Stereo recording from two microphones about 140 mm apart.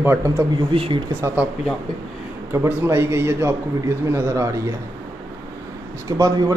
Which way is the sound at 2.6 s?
20° right (ahead or behind).